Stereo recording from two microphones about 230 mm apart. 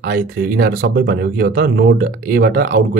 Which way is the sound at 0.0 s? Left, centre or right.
Right.